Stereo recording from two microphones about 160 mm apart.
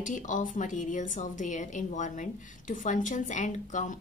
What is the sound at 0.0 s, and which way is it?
Speech, 50° left (ahead or behind).